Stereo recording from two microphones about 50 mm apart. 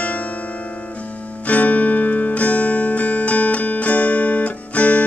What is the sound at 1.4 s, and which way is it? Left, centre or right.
Music, left.